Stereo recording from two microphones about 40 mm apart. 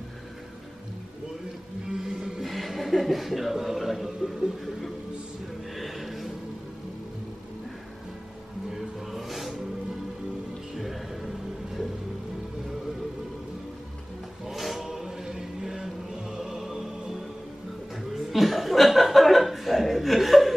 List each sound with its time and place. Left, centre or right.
1.9 s vehicle: centre
2.4 s speech: centre
4.3 s a sound: centre
5.8 s music: centre
8.7 s a sound: centre
10.8 s music: centre
14.5 s chant: centre
18.1 s chuckle: centre